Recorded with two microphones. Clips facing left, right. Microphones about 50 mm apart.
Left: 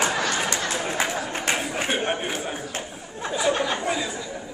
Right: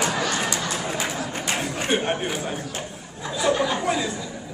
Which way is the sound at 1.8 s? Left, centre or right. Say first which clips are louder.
Right 4 dB; centre.